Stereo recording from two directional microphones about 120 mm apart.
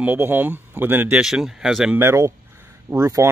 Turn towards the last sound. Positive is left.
turn(degrees=-25)  # may be behind; listen again after turning